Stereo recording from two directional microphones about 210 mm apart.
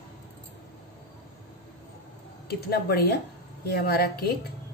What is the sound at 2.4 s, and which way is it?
Speech, 50° left (ahead or behind).